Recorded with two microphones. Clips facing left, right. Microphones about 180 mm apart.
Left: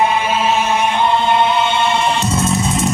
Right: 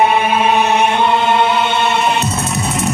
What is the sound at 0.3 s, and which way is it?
Music, 60° right (ahead or behind).